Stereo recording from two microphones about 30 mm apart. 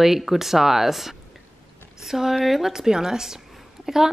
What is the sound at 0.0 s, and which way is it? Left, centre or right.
A woman's voice, centre.